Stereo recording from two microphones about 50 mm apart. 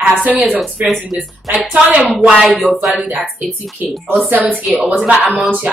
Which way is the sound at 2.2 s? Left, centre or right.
Right.